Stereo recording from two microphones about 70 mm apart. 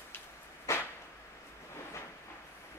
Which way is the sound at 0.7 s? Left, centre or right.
Left.